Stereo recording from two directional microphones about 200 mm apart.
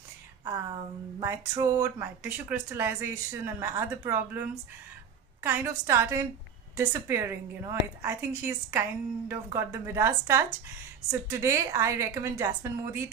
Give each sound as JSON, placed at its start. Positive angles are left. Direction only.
{"t": 0.5, "sound": "a sound", "side_deg": -15}
{"t": 1.2, "sound": "speech", "side_deg": -15}
{"t": 5.4, "sound": "speech", "side_deg": -10}